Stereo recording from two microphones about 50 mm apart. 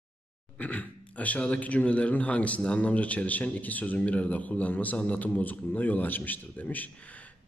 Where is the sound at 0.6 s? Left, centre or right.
Left.